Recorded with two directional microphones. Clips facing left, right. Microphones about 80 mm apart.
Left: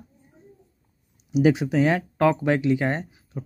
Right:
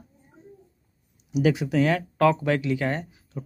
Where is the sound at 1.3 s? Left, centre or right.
Left.